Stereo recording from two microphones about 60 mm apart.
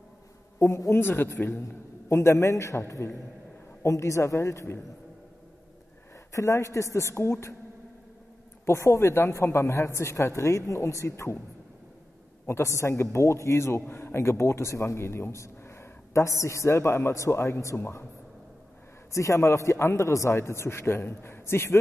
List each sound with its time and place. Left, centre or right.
0.6 s a woman's voice: left
0.9 s a man's voice: left
6.3 s a woman's voice: left
8.6 s a man's voice: left
12.4 s a man's voice: left
19.1 s a man's voice: left